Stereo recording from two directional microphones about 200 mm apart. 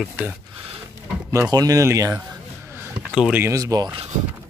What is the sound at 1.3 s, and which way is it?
Speech, 15° right (ahead or behind).